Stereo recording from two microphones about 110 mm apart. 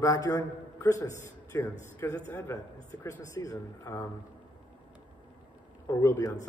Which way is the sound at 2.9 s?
30° left (ahead or behind).